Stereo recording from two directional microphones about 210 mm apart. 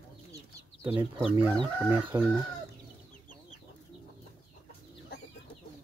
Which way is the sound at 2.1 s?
20° right (ahead or behind).